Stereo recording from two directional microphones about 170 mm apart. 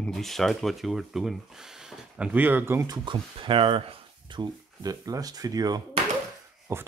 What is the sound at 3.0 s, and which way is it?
Speech, 30° right (ahead or behind).